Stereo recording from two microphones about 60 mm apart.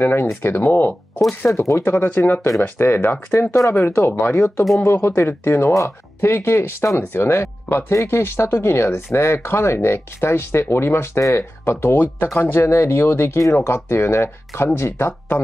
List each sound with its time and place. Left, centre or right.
0.0 s speech: left
1.5 s speech: left
2.2 s speech: left
3.5 s speech: left